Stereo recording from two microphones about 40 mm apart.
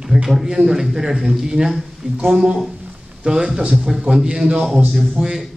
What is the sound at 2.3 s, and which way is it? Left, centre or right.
Speech, right.